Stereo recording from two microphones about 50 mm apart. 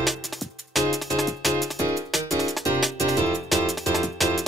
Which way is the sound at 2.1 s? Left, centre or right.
Centre.